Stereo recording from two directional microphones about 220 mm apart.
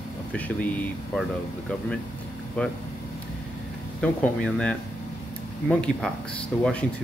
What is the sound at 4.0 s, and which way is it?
Speech, 5° left (ahead or behind).